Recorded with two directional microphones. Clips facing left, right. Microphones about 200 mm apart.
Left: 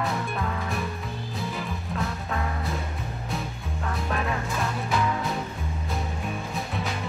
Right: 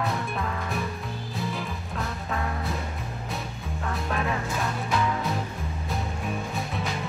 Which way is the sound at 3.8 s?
Centre (ahead or behind).